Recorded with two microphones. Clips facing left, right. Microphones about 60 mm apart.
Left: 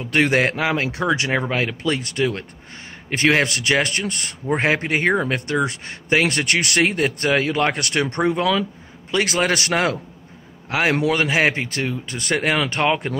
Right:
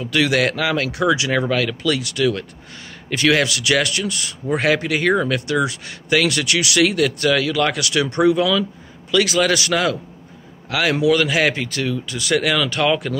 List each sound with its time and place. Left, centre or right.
0.0 s speech: left
4.5 s speech: left